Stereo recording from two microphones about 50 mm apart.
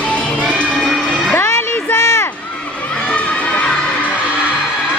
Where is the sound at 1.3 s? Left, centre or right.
Left.